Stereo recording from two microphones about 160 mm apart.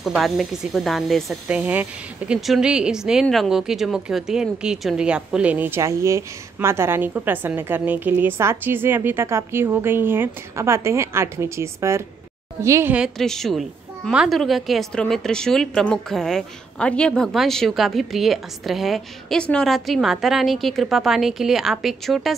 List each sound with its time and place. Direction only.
0.0 s speech: centre (ahead or behind); by 12.9 s 20° right (ahead or behind)
12.9 s a woman's voice: centre (ahead or behind)